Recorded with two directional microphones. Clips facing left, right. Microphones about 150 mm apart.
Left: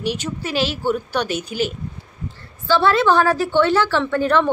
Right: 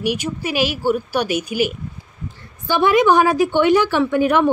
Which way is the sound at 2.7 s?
15° right (ahead or behind).